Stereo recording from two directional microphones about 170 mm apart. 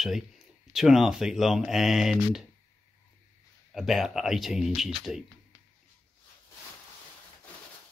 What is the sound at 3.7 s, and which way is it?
Speech, centre (ahead or behind).